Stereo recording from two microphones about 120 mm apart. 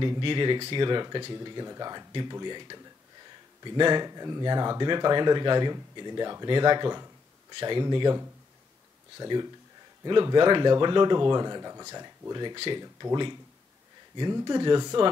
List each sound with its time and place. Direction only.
0.0 s speech: 40° right (ahead or behind)
9.2 s speech: 35° right (ahead or behind)